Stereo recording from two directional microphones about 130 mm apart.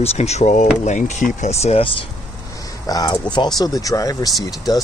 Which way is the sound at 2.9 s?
30° left (ahead or behind).